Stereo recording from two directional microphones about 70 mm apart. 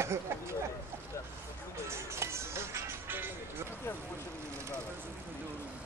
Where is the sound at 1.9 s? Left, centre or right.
Right.